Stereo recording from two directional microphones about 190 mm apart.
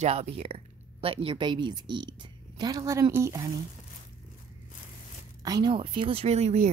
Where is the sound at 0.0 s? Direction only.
35° right (ahead or behind); by 3.4 s 15° right (ahead or behind).